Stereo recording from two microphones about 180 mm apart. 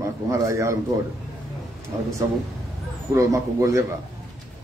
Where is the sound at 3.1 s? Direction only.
15° right (ahead or behind).